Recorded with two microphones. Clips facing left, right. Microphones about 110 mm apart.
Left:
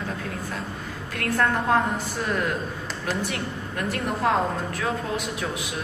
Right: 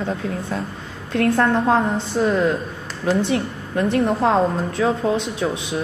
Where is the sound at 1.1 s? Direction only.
25° right (ahead or behind).